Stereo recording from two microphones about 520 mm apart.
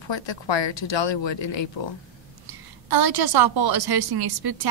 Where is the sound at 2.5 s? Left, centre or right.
Right.